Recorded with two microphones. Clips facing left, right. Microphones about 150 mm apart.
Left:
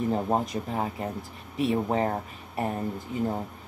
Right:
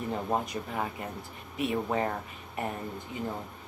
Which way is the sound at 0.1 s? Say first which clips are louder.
Left 4 dB; 35° left (ahead or behind).